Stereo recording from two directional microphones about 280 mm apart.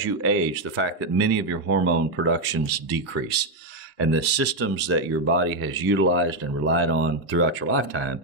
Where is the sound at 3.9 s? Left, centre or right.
Right.